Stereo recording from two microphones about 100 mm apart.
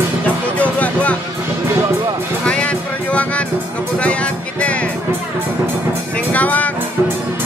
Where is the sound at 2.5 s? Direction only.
10° left (ahead or behind).